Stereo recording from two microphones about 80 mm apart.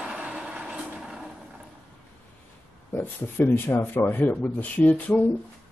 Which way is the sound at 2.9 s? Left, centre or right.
Left.